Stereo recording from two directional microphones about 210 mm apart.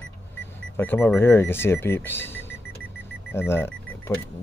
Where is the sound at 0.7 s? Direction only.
10° left (ahead or behind).